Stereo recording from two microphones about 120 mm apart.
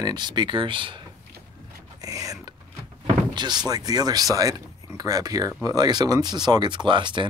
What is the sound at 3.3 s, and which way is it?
Door, 40° right (ahead or behind).